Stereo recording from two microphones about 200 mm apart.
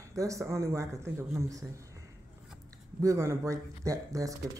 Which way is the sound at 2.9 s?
15° right (ahead or behind).